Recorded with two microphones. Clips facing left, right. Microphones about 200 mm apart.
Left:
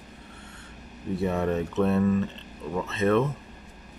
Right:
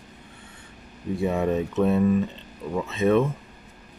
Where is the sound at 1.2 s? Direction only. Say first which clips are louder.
Right 2 dB; 15° right (ahead or behind).